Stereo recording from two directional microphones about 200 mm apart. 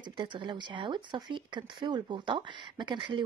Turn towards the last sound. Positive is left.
turn(degrees=-20)  # may be behind; listen again after turning